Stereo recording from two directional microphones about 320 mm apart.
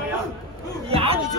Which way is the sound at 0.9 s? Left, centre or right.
Centre.